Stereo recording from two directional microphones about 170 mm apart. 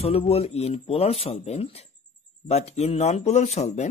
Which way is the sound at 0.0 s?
35° left (ahead or behind).